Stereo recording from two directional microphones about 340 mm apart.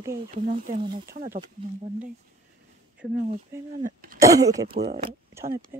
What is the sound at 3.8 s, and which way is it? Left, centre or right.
Throat clearing, right.